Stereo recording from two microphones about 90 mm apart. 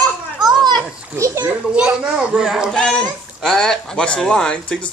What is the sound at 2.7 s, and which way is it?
Speech, 10° left (ahead or behind).